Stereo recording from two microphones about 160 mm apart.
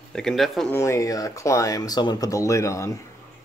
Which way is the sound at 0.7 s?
20° left (ahead or behind).